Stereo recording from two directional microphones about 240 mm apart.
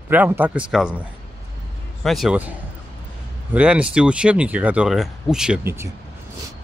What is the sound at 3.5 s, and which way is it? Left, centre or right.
Speech, centre.